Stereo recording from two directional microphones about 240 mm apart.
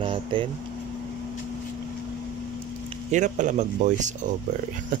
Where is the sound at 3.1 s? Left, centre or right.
Right.